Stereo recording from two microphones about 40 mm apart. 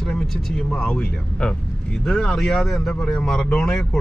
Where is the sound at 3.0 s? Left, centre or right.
Centre.